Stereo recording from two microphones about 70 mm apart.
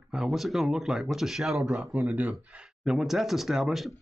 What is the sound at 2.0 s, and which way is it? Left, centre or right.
Speech, centre.